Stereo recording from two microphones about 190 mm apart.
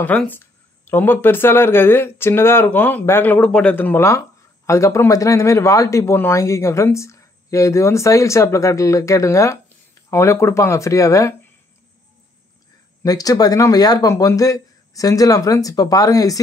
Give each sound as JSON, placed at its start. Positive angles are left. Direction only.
{"t": 0.0, "sound": "speech", "side_deg": 10}
{"t": 13.0, "sound": "speech", "side_deg": 20}